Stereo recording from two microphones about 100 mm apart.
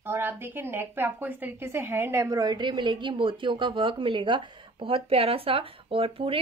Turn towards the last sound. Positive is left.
turn(degrees=-65)  # may be behind; listen again after turning